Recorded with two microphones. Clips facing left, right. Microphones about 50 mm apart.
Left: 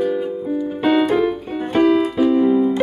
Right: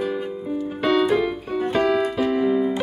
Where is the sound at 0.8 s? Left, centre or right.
Left.